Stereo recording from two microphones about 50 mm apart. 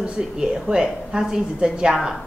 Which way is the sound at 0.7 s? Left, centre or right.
Centre.